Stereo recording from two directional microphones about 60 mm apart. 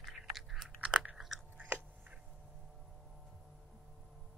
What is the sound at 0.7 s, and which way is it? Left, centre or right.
Chewing, centre.